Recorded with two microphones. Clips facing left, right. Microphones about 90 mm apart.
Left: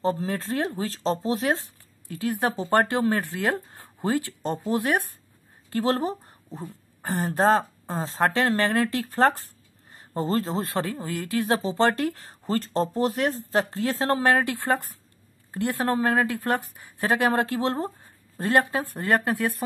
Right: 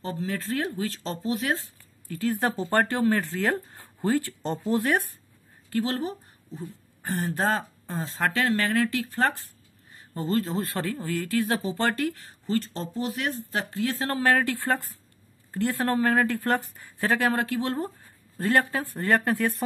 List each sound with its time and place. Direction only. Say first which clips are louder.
0.0 s speech: left 5 dB; 35° left (ahead or behind)
2.1 s speech: even; 15° left (ahead or behind)
5.7 s a sound: left 3 dB; 35° left (ahead or behind)
7.2 s speech: left 6 dB; 25° left (ahead or behind)
17.3 s speech: left 3 dB; 30° left (ahead or behind); by 19.6 s 5° left (ahead or behind)